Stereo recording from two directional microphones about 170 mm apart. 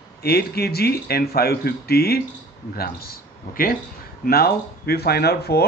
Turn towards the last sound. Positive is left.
turn(degrees=70)  # may be behind; listen again after turning